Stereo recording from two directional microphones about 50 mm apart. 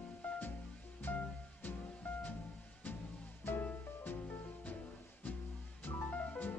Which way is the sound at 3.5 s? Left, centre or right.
Left.